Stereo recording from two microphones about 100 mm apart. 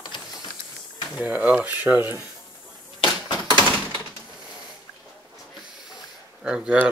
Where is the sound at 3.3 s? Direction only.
50° left (ahead or behind).